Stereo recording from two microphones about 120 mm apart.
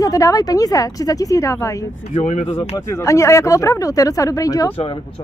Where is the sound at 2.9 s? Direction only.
25° left (ahead or behind).